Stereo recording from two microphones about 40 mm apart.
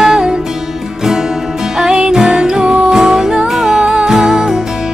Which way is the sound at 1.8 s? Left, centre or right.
Centre.